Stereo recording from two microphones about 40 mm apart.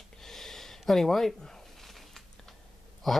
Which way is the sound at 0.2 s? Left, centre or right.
Centre.